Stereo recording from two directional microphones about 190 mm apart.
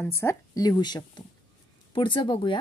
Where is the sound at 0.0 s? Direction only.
15° left (ahead or behind).